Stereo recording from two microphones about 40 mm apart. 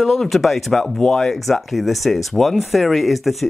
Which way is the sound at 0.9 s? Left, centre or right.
Centre.